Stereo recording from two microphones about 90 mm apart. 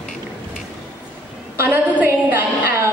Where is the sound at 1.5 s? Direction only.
25° right (ahead or behind).